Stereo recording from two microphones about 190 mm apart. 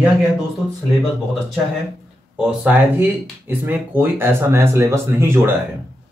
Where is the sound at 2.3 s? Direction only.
10° right (ahead or behind).